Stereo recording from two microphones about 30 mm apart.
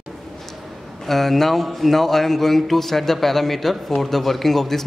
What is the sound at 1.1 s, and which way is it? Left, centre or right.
Speech, centre.